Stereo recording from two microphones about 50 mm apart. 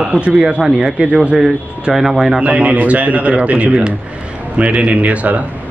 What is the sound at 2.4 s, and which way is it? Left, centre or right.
A man's voice, right.